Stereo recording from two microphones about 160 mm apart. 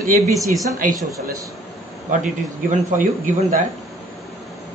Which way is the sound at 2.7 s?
50° right (ahead or behind).